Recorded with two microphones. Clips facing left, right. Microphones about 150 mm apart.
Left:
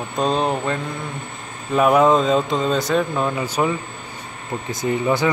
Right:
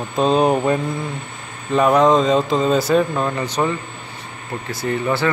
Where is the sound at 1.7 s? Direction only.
5° left (ahead or behind).